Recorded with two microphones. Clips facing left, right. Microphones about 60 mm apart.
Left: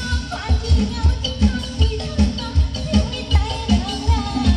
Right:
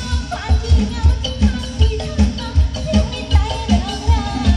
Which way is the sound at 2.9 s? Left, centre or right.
Centre.